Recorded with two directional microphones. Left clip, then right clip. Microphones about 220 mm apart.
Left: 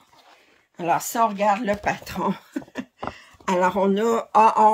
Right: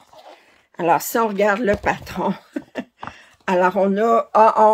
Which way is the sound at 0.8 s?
15° right (ahead or behind).